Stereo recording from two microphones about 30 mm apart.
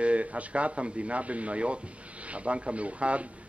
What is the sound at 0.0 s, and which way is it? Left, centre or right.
Speech, right.